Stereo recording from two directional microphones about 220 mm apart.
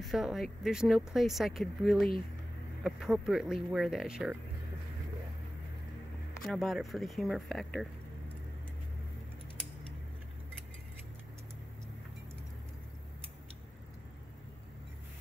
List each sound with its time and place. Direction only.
0.0 s speech: centre (ahead or behind)
6.4 s speech: centre (ahead or behind)